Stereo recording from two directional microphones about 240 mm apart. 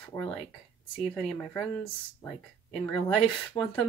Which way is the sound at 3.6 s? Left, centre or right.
Left.